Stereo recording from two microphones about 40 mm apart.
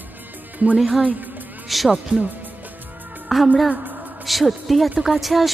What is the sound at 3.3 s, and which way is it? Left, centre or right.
A woman's voice, centre.